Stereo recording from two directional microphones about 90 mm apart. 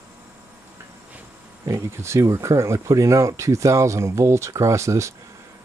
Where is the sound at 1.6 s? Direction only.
30° right (ahead or behind).